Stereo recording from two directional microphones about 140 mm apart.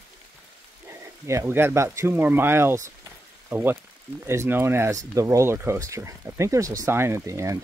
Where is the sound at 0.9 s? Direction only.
20° right (ahead or behind).